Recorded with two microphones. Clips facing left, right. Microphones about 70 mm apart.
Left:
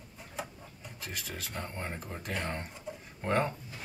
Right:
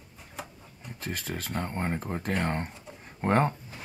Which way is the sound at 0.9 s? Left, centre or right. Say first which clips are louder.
Right 6 dB; right.